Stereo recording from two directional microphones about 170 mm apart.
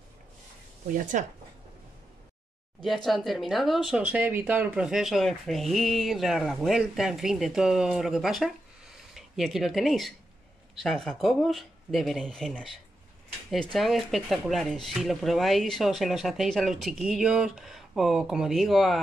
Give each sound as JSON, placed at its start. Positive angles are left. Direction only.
{"t": 0.9, "sound": "speech", "side_deg": -45}
{"t": 2.8, "sound": "speech", "side_deg": 0}
{"t": 13.7, "sound": "speech", "side_deg": 0}